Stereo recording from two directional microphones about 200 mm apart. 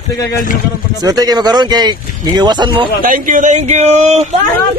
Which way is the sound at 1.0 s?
20° right (ahead or behind).